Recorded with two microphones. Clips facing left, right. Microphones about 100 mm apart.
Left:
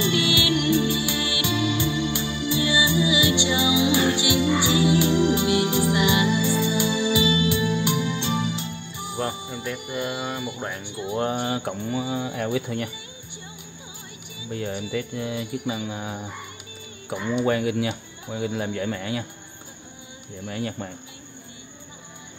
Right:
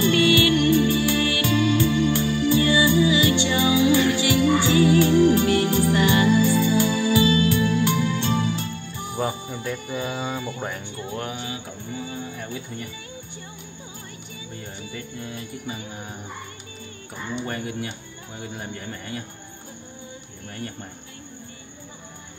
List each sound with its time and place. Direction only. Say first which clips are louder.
0.2 s music: right 5 dB; 20° left (ahead or behind)
9.9 s a sound: left 1 dB; centre (ahead or behind)
10.8 s speech: left 4 dB; 15° left (ahead or behind)
11.3 s music: left 7 dB; 60° left (ahead or behind); by 12.9 s 85° left
14.5 s music: left 10 dB; 90° left
20.4 s music: left 6 dB; 90° left